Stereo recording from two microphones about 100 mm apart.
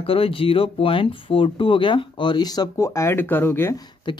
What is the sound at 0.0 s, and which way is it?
Speech, 70° left (ahead or behind).